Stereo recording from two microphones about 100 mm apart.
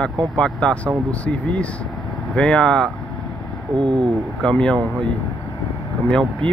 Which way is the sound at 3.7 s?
50° right (ahead or behind).